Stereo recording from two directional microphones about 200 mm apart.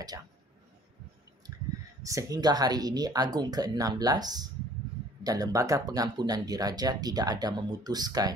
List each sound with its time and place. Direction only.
2.0 s speech: 15° right (ahead or behind)